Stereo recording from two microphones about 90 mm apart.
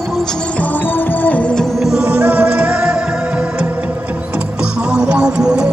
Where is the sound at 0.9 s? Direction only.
20° left (ahead or behind).